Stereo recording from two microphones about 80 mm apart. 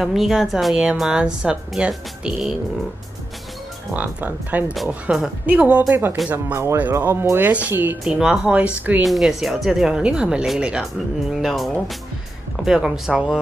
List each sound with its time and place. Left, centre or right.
0.0 s speech: centre
3.9 s speech: right
5.9 s speech: right
8.0 s speech: centre
9.0 s speech: centre